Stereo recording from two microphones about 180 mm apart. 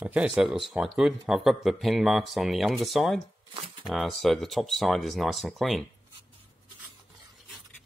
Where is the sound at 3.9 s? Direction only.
Centre (ahead or behind).